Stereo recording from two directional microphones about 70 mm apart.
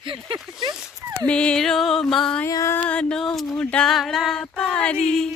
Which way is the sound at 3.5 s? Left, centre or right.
Centre.